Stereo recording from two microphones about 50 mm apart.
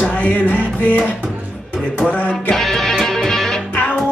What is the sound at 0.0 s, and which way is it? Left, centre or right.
Music, left.